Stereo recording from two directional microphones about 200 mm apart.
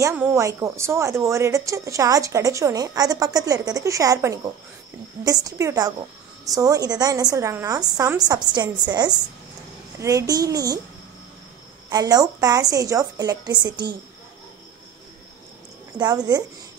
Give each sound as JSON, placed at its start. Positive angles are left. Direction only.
{"t": 0.0, "sound": "a woman's voice", "side_deg": -15}
{"t": 11.9, "sound": "a woman's voice", "side_deg": -20}
{"t": 16.0, "sound": "a woman's voice", "side_deg": -20}